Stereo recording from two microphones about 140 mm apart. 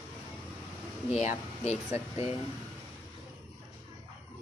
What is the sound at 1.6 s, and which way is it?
Speech, 50° left (ahead or behind).